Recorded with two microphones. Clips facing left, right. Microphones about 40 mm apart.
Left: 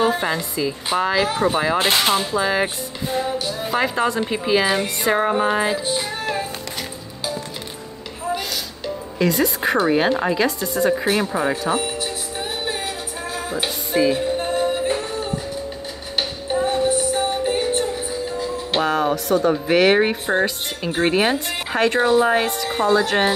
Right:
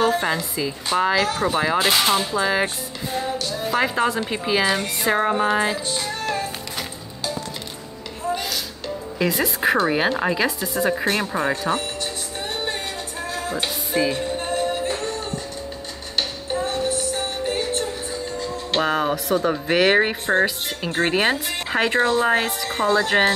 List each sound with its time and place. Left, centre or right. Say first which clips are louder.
0.0 s a woman's voice: even; centre
1.8 s speech: left 1 dB; left
2.1 s a woman's voice: left 1 dB; centre
3.8 s speech: left 2 dB; centre
5.9 s music: left 2 dB; centre
8.8 s speech: left 3 dB; centre
13.3 s music: left 1 dB; centre
18.9 s speech: left 3 dB; centre